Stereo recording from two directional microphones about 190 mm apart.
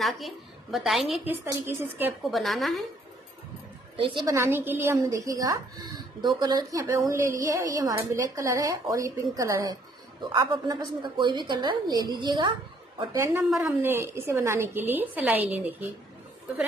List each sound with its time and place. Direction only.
0.0 s a woman's voice: centre (ahead or behind)
1.4 s a woman's voice: 15° right (ahead or behind)
2.3 s a woman's voice: centre (ahead or behind)
3.9 s a woman's voice: 25° right (ahead or behind); by 15.9 s 10° right (ahead or behind)